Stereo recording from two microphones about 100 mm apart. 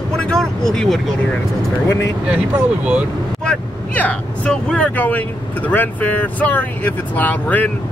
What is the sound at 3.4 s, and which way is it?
Speech, 15° left (ahead or behind).